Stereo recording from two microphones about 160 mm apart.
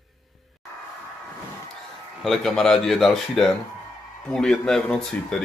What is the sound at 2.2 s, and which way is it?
Speech, centre (ahead or behind).